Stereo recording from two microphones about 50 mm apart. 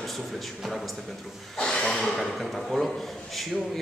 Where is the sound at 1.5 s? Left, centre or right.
Centre.